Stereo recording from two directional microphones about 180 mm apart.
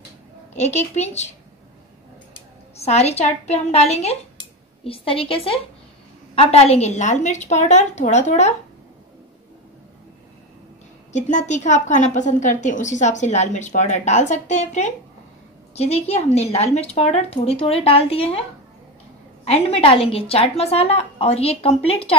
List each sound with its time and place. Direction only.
0.6 s a woman's voice: 40° left (ahead or behind)
2.8 s a woman's voice: 35° left (ahead or behind)
11.1 s a woman's voice: 40° left (ahead or behind)
19.4 s a woman's voice: 35° left (ahead or behind)